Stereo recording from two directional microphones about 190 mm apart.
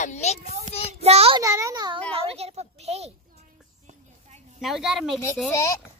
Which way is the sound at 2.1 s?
30° right (ahead or behind).